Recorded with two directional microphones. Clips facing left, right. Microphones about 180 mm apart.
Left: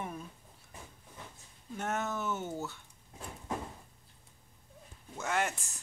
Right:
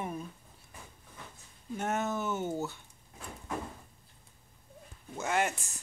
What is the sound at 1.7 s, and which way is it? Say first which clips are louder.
Speech: right 3 dB; 10° right (ahead or behind).